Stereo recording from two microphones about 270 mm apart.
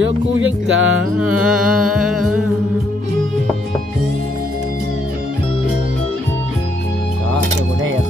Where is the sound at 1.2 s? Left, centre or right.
Centre.